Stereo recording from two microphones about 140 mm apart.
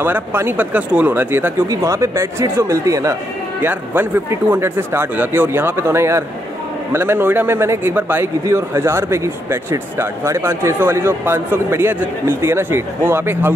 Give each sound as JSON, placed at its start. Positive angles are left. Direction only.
{"t": 0.0, "sound": "a man's voice", "side_deg": -15}